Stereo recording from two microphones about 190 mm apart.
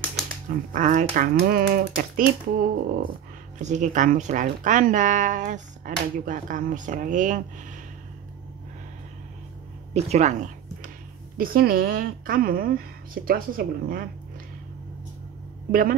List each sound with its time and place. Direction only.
0.5 s speech: 45° right (ahead or behind)
9.9 s speech: 35° right (ahead or behind)
11.3 s speech: 50° right (ahead or behind)
15.7 s speech: 45° right (ahead or behind)